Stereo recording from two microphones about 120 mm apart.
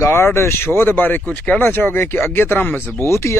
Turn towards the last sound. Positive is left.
turn(degrees=20)  # may be behind; listen again after turning